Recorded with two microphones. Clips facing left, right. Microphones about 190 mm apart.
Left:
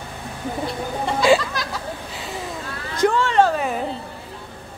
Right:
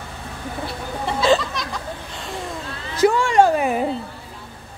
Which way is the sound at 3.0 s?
10° right (ahead or behind).